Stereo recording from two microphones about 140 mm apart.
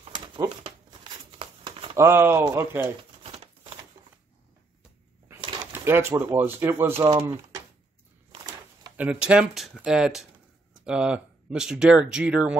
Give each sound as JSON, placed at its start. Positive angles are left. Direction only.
{"t": 0.0, "sound": "a sound", "side_deg": -35}
{"t": 0.9, "sound": "crumpling", "side_deg": -35}
{"t": 2.0, "sound": "speech", "side_deg": -20}
{"t": 3.0, "sound": "a sound", "side_deg": -40}
{"t": 5.7, "sound": "speech", "side_deg": -15}
{"t": 8.9, "sound": "speech", "side_deg": -10}